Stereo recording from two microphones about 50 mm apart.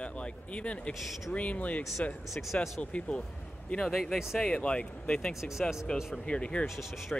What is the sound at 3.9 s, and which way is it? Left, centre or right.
Speech, centre.